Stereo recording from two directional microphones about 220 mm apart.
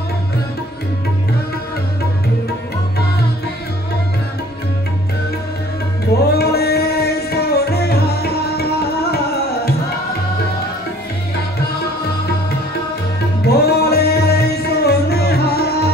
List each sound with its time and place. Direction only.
6.3 s music: 45° left (ahead or behind)
13.5 s music: 45° left (ahead or behind)